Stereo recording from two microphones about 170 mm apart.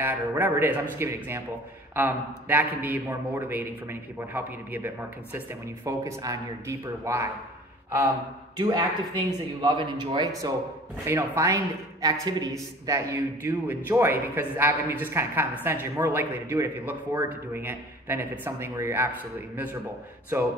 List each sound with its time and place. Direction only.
0.0 s a man's voice: 15° right (ahead or behind)
8.5 s a man's voice: 25° right (ahead or behind)